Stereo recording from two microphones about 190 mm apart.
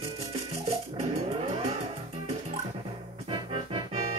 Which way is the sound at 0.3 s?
30° right (ahead or behind).